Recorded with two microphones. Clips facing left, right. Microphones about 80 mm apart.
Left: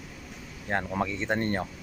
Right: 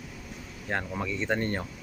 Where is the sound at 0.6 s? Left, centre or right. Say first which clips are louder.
Left 3 dB; left.